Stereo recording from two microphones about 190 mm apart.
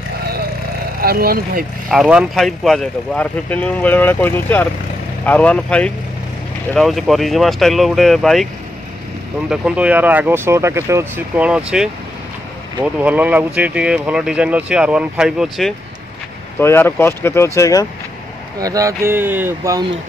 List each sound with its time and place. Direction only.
1.0 s speech: 50° right (ahead or behind)
1.9 s speech: 5° right (ahead or behind)
9.5 s speech: 5° right (ahead or behind)
16.5 s speech: 10° left (ahead or behind)
18.6 s speech: 20° right (ahead or behind)